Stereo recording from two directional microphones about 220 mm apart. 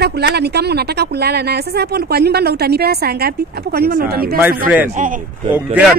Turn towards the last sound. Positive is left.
turn(degrees=-5)  # may be behind; listen again after turning